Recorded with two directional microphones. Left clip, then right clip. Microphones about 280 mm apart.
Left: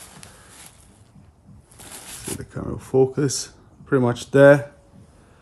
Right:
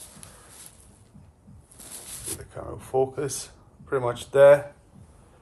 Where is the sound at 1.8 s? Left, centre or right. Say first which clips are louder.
Left 4 dB; centre.